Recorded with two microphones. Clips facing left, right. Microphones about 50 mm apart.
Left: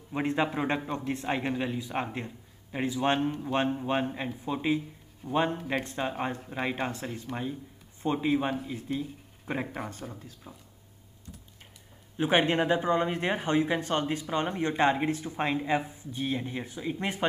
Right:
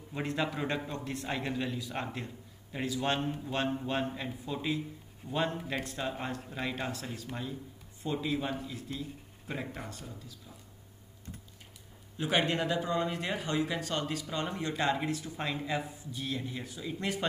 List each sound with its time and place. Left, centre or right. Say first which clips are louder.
0.1 s a man's voice: left 5 dB; left
7.3 s speech: left 5 dB; centre
8.0 s speech: left 6 dB; left
12.2 s speech: left 5 dB; left